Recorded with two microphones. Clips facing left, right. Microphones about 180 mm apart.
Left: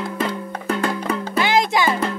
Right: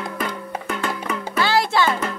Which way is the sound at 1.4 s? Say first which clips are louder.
Even; 20° left (ahead or behind).